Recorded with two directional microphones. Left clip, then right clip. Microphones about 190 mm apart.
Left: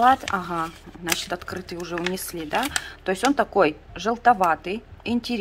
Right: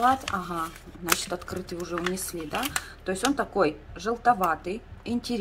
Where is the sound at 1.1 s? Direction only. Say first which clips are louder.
Left 1 dB; centre (ahead or behind).